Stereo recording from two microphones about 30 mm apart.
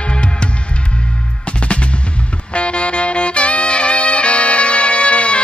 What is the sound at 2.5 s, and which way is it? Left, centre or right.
Music, left.